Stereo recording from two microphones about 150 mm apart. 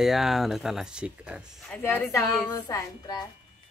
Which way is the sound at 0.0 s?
Centre (ahead or behind).